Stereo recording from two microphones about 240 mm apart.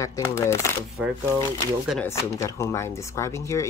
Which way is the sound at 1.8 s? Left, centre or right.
Centre.